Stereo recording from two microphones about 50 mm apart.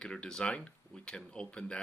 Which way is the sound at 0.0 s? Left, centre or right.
Centre.